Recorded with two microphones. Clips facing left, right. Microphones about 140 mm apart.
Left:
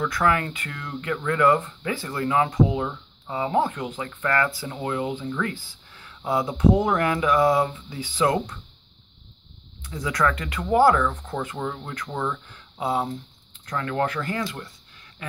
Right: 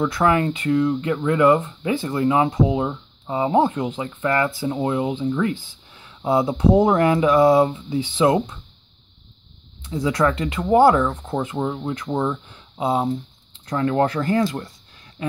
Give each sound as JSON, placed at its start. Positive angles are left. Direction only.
{"t": 0.0, "sound": "speech", "side_deg": -25}
{"t": 9.8, "sound": "speech", "side_deg": -25}
{"t": 15.2, "sound": "a sound", "side_deg": -25}